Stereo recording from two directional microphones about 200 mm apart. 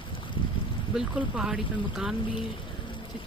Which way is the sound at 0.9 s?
5° right (ahead or behind).